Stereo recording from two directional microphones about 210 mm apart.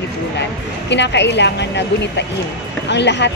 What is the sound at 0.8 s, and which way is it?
A woman's voice, 55° left (ahead or behind).